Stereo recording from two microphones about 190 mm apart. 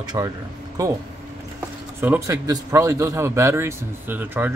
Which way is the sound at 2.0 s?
15° right (ahead or behind).